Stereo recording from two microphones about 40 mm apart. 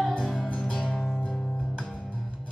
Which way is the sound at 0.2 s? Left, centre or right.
Centre.